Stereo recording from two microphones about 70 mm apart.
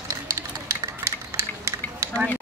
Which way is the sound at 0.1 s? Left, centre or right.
Right.